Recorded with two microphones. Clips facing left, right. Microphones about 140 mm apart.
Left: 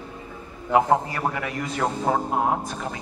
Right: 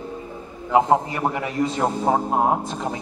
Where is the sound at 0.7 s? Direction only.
20° right (ahead or behind).